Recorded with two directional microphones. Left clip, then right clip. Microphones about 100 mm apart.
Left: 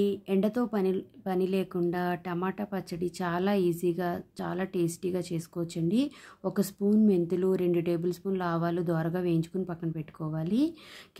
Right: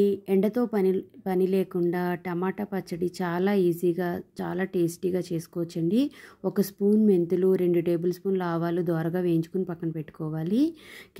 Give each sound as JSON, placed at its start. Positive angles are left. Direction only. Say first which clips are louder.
{"t": 0.0, "sound": "a woman's voice", "louder": "right 5 dB", "side_deg": -35}